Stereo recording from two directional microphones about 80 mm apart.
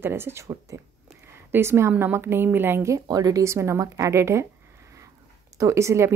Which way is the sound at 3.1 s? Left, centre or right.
Right.